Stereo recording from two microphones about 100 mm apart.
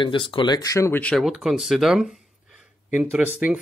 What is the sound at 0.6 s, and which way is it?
Speech, 30° left (ahead or behind).